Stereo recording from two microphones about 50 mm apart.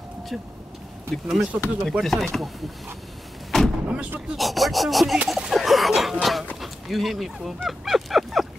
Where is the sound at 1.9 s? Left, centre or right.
Centre.